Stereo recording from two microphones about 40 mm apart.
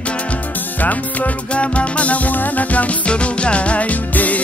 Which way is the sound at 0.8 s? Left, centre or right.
Left.